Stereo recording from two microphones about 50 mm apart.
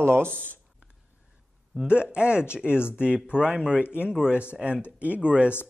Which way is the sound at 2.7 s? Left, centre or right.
Left.